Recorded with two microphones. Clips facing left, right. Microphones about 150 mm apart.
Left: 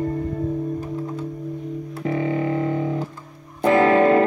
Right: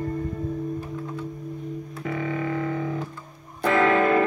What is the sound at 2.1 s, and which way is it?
Music, 30° left (ahead or behind).